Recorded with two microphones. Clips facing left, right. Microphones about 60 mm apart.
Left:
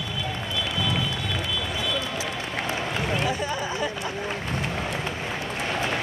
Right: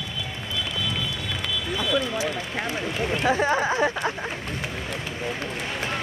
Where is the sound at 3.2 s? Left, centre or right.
Right.